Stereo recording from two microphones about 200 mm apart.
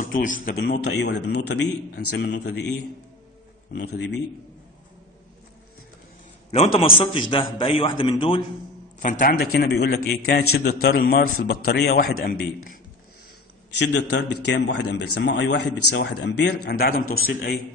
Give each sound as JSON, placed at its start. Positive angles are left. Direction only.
{"t": 0.1, "sound": "a man's voice", "side_deg": 40}
{"t": 0.7, "sound": "a man's voice", "side_deg": 60}
{"t": 6.5, "sound": "a man's voice", "side_deg": 30}
{"t": 9.2, "sound": "a man's voice", "side_deg": 45}
{"t": 13.7, "sound": "a man's voice", "side_deg": 60}